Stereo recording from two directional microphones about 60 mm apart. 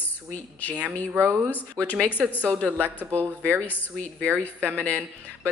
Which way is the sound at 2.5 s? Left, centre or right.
Centre.